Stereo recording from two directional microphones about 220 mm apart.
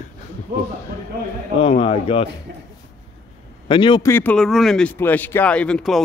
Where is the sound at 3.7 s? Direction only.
20° left (ahead or behind); by 6.0 s 5° left (ahead or behind).